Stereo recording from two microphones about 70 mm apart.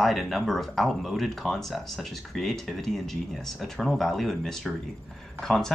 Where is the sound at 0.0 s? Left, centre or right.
Centre.